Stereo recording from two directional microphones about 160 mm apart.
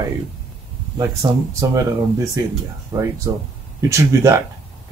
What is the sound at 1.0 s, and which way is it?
Speech, 20° right (ahead or behind).